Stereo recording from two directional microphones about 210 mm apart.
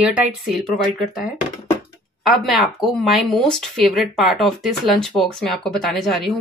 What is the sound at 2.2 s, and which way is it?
Speech, centre (ahead or behind).